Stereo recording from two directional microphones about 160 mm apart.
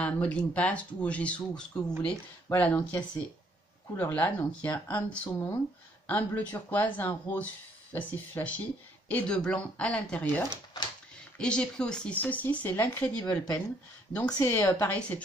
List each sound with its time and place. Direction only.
0.0 s speech: 10° left (ahead or behind)